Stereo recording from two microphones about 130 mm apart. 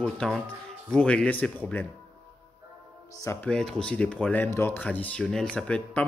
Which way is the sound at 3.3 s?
10° left (ahead or behind).